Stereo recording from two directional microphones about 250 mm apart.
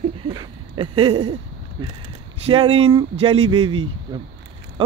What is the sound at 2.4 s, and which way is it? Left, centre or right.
Speech, right.